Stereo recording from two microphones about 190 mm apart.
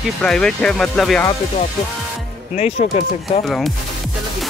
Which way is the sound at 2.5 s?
35° left (ahead or behind).